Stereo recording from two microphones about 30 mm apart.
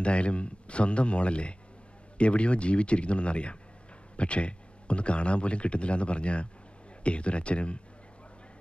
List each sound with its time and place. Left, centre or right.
0.0 s speech: left